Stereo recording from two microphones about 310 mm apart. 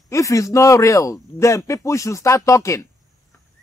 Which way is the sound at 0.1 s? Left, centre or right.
Centre.